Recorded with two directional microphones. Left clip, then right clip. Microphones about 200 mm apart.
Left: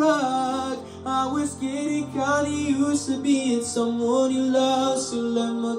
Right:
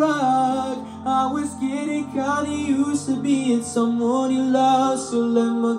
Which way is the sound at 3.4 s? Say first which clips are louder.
Right 2 dB; centre (ahead or behind).